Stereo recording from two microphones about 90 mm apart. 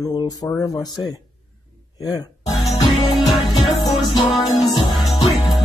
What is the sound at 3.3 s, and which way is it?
Music, 55° left (ahead or behind).